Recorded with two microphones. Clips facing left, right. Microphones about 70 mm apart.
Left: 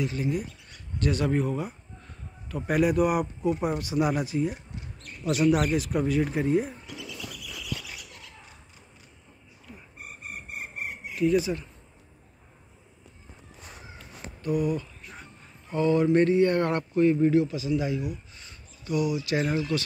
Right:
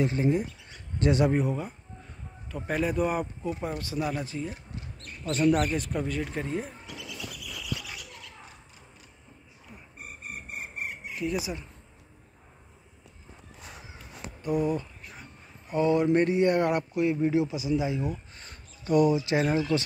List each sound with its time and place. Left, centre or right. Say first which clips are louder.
0.0 s speech: right 3 dB; right
1.3 s speech: even; centre
2.0 s a sound: even; centre
2.6 s a man's voice: left 4 dB; centre
11.1 s speech: left 8 dB; centre
14.4 s a man's voice: even; right
15.6 s speech: left 1 dB; centre
17.3 s a man's voice: left 2 dB; centre
18.0 s a sound: right 1 dB; right
19.1 s a man's voice: right 1 dB; right